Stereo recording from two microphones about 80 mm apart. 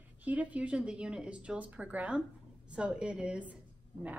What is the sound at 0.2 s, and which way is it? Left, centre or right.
A woman's voice, centre.